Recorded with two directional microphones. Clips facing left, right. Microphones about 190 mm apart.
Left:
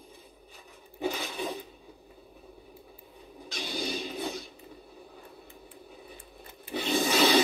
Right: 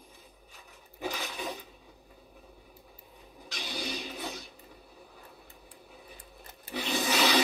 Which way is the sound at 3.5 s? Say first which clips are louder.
Left 4 dB; 30° left (ahead or behind).